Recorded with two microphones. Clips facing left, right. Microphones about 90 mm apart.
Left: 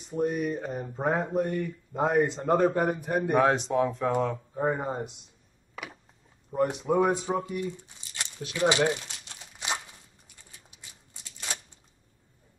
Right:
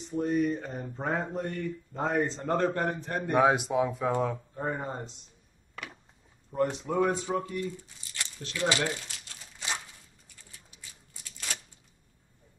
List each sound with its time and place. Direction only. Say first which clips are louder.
0.1 s speech: even; 15° left (ahead or behind)
3.4 s speech: left 1 dB; 5° right (ahead or behind)
4.6 s speech: left 8 dB; 10° left (ahead or behind)
6.5 s speech: left 3 dB; 10° left (ahead or behind)
7.4 s a sound: left 2 dB; 20° left (ahead or behind)